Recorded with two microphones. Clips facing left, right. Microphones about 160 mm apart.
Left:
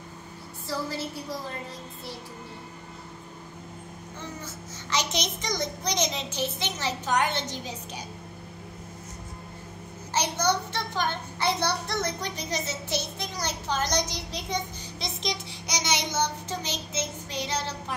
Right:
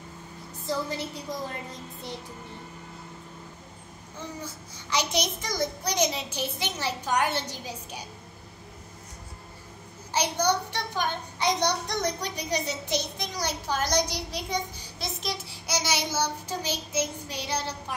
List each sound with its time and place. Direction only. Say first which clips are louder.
0.7 s a woman's voice: right 2 dB; 20° right (ahead or behind)
4.9 s a child's voice: right 2 dB; 10° right (ahead or behind)
10.1 s a child's voice: right 1 dB; 10° right (ahead or behind)